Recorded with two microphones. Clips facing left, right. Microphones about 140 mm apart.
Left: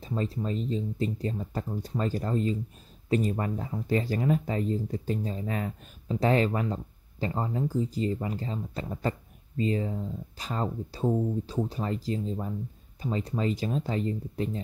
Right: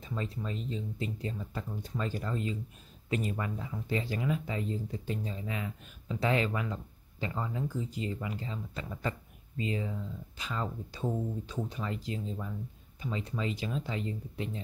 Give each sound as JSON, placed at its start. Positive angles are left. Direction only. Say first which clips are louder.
{"t": 0.0, "sound": "speech", "louder": "left 6 dB", "side_deg": 35}